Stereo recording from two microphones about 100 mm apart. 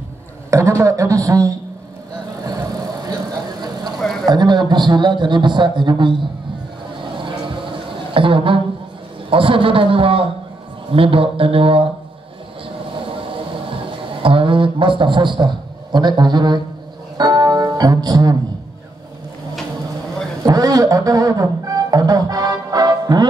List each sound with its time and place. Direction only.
0.5 s a man's voice: 30° right (ahead or behind)
2.4 s vehicle: 40° right (ahead or behind)
4.0 s a sound: 5° left (ahead or behind)
4.3 s a man's voice: 45° right (ahead or behind)
7.2 s a sound: 55° right (ahead or behind)
9.3 s speech: 65° right (ahead or behind)
13.0 s a sound: 65° right (ahead or behind); by 16.6 s 45° right (ahead or behind)
17.2 s music: 40° right (ahead or behind)
20.4 s speech: 40° right (ahead or behind)